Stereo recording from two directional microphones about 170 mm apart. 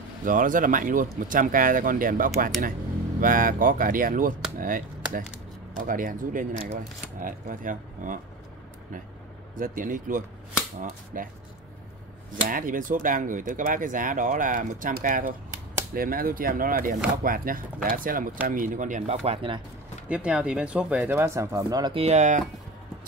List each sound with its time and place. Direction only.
0.2 s speech: 50° right (ahead or behind)
9.6 s speech: 50° right (ahead or behind)
12.4 s speech: 55° right (ahead or behind); by 19.6 s 35° right (ahead or behind)
20.1 s speech: 5° right (ahead or behind); by 22.4 s 45° right (ahead or behind)